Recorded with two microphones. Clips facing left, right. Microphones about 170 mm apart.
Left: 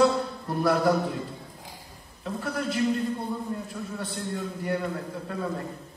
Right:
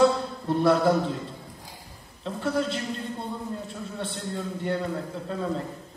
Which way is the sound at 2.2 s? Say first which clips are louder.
Right 3 dB; 25° right (ahead or behind).